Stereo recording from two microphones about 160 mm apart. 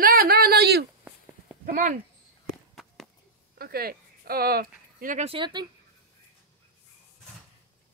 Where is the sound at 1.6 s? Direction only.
55° right (ahead or behind).